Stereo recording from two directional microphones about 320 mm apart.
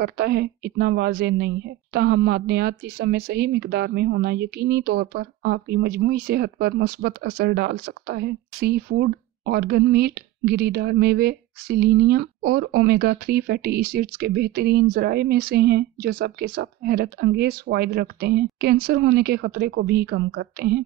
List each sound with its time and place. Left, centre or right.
0.0 s a woman's voice: right